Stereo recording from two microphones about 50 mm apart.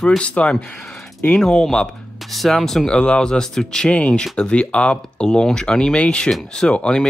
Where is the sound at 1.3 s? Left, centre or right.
Centre.